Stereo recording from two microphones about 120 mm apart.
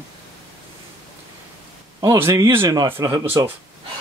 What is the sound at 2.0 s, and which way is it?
Speech, 25° right (ahead or behind).